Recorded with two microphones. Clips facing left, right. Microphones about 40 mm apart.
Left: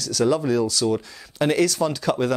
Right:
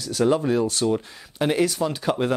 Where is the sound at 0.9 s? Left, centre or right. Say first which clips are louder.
Left 2 dB; centre.